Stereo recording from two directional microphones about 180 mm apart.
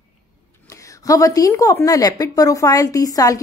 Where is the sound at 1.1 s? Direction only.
20° left (ahead or behind).